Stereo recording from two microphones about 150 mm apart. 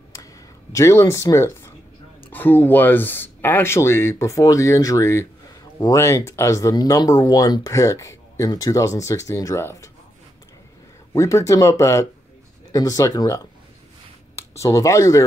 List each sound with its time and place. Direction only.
0.7 s speech: 15° left (ahead or behind)
11.1 s speech: 20° left (ahead or behind)
14.6 s speech: 20° left (ahead or behind)